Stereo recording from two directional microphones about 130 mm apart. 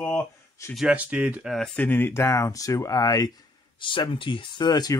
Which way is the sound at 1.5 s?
5° left (ahead or behind).